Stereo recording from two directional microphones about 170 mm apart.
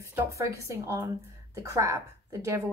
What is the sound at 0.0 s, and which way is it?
A woman's voice, 15° right (ahead or behind).